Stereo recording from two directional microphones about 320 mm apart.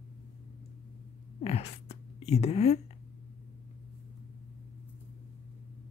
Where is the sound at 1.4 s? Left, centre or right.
Centre.